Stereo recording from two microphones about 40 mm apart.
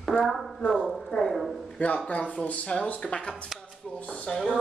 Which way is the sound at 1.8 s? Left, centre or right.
Left.